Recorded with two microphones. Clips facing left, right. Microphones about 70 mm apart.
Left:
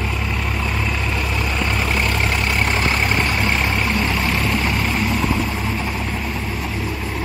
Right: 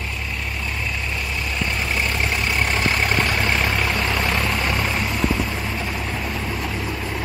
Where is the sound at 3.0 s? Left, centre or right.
Centre.